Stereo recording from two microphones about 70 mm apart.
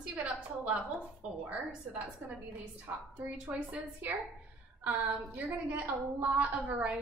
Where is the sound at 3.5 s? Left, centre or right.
Centre.